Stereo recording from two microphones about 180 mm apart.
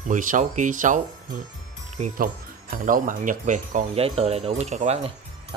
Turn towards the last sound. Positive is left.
turn(degrees=-40)  # may be behind; listen again after turning